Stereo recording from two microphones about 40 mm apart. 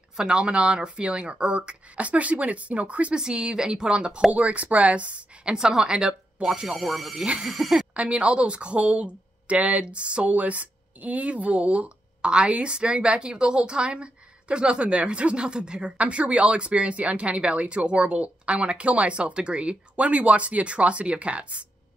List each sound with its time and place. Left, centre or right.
0.2 s speech: right
2.0 s speech: right
3.2 s speech: right
4.3 s speech: right; by 6.7 s centre
6.7 s speech: centre
7.9 s speech: right